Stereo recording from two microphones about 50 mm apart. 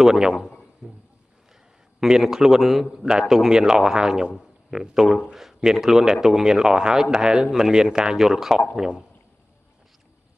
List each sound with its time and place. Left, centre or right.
0.0 s a man's voice: centre
0.8 s a sound: centre
2.0 s a man's voice: centre